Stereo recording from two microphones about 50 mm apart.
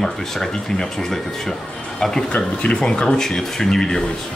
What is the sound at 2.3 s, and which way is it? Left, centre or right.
Speech, left.